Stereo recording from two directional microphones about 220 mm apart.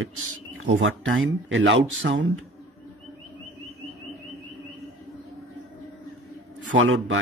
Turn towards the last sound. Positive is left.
turn(degrees=-65)  # may be behind; listen again after turning